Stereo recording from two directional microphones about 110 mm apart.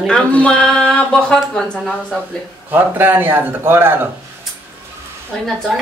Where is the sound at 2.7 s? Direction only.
20° right (ahead or behind).